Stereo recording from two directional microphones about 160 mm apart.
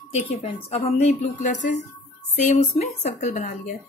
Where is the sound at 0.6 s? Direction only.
40° left (ahead or behind).